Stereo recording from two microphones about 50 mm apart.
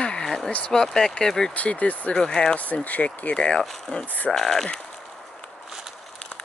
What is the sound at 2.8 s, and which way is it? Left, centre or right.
Speech, left.